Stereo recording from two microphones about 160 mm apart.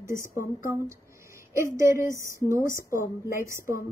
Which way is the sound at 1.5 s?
20° right (ahead or behind).